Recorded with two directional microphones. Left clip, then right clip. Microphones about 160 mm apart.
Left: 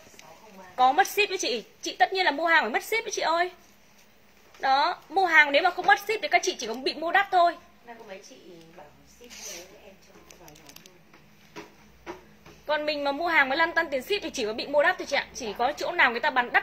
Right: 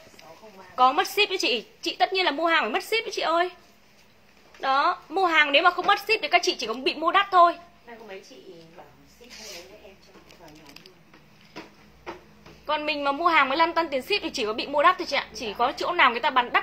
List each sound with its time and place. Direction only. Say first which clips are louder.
0.7 s a woman's voice: right 1 dB; 10° right (ahead or behind)
4.6 s a woman's voice: right 1 dB; 10° right (ahead or behind)
9.3 s a sound: even; 20° left (ahead or behind)
12.6 s a woman's voice: right 1 dB; 15° right (ahead or behind)